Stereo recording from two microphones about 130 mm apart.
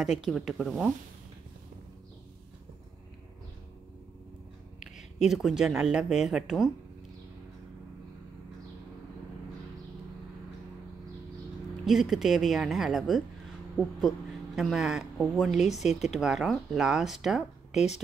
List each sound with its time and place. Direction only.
0.0 s a woman's voice: 5° right (ahead or behind)
4.7 s a sound: 65° left (ahead or behind)
5.3 s a woman's voice: 5° right (ahead or behind)
11.8 s a woman's voice: 5° right (ahead or behind)
15.8 s a woman's voice: 60° left (ahead or behind)
16.1 s a woman's voice: centre (ahead or behind)